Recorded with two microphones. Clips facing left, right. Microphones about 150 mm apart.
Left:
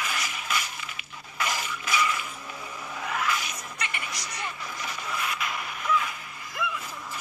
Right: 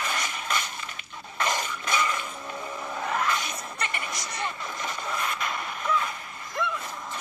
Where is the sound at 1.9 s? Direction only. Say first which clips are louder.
Even; 45° right (ahead or behind).